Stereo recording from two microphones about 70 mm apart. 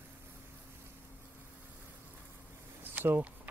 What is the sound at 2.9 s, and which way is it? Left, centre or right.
Speech, right.